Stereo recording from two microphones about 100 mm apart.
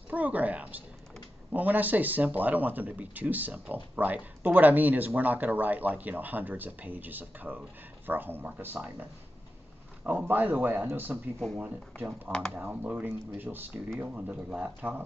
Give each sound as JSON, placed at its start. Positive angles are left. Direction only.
{"t": 0.1, "sound": "speech", "side_deg": -15}
{"t": 10.0, "sound": "speech", "side_deg": -20}
{"t": 12.3, "sound": "speech", "side_deg": 5}
{"t": 12.8, "sound": "speech", "side_deg": -15}